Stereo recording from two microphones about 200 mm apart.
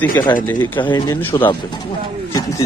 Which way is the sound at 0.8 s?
20° left (ahead or behind).